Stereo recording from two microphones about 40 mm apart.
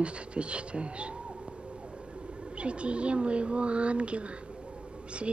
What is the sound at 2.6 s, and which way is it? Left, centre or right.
Speech, right.